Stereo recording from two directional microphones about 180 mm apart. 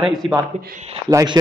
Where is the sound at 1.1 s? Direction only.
15° right (ahead or behind).